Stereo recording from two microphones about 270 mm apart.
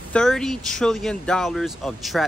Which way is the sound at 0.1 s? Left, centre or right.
Centre.